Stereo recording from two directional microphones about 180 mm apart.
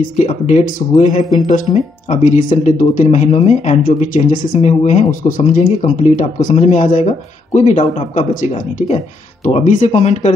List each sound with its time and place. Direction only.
0.2 s speech: 45° left (ahead or behind)
3.8 s speech: 50° left (ahead or behind)
4.5 s speech: 40° left (ahead or behind)